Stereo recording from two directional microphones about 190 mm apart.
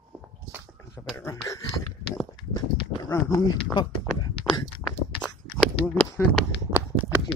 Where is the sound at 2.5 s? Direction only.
20° left (ahead or behind).